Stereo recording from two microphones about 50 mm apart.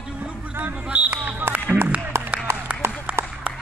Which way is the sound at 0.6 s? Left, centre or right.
Right.